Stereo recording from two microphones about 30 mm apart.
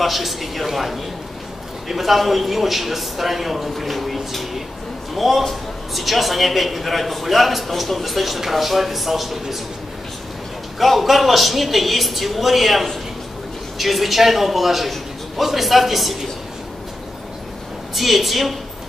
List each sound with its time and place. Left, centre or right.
0.0 s a man's voice: centre
10.8 s a man's voice: centre
17.9 s a man's voice: centre